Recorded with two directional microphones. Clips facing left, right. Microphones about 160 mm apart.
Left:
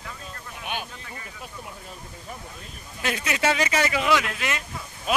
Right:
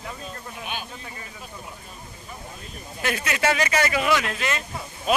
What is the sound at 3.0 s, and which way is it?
Speech, 20° left (ahead or behind).